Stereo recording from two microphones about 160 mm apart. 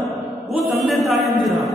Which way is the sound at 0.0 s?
Centre (ahead or behind).